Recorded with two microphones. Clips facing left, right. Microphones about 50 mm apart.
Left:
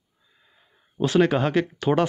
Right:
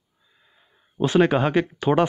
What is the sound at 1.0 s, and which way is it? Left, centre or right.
Speech, right.